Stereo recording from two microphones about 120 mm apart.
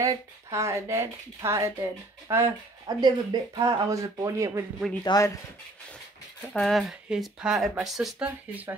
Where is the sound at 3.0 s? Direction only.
35° right (ahead or behind).